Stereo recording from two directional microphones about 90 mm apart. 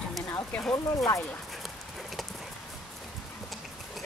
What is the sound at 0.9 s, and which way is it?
Speech, 35° left (ahead or behind).